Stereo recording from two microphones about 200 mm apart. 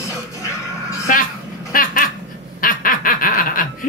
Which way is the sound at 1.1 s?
40° left (ahead or behind).